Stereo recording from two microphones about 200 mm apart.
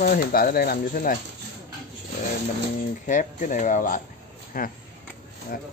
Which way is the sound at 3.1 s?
40° left (ahead or behind).